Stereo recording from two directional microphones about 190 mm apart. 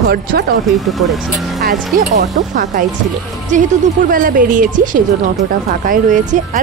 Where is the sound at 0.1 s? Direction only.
55° right (ahead or behind).